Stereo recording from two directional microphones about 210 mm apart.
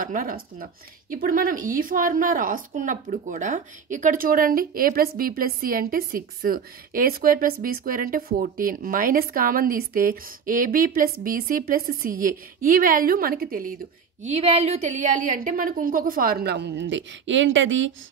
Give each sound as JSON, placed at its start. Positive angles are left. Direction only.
{"t": 0.0, "sound": "a woman's voice", "side_deg": -40}
{"t": 14.2, "sound": "a woman's voice", "side_deg": -30}